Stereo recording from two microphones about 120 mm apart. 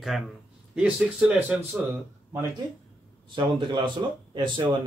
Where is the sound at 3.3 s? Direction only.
45° right (ahead or behind).